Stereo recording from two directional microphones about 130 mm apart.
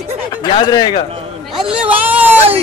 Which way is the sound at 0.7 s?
30° left (ahead or behind).